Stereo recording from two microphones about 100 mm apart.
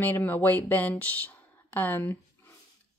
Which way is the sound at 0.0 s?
20° left (ahead or behind).